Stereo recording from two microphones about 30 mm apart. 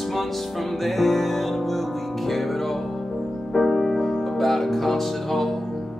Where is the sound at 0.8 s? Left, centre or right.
Centre.